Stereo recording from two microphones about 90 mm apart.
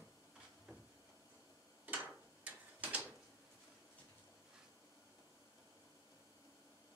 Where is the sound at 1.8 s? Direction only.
20° right (ahead or behind).